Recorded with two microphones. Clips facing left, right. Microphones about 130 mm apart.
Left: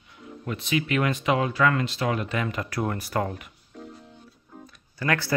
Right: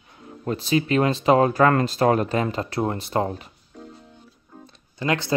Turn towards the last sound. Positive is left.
turn(degrees=-20)  # may be behind; listen again after turning